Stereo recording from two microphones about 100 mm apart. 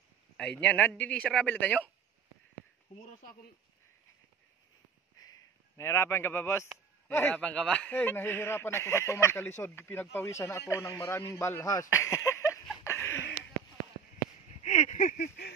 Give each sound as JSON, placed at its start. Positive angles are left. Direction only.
{"t": 0.4, "sound": "speech", "side_deg": 10}
{"t": 5.8, "sound": "a man's voice", "side_deg": 30}
{"t": 12.8, "sound": "a sound", "side_deg": 25}